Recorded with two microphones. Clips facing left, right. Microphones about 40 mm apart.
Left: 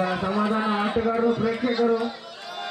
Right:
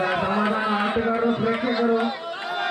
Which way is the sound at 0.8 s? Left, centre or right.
Right.